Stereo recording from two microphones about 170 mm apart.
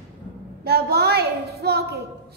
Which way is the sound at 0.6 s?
70° right (ahead or behind).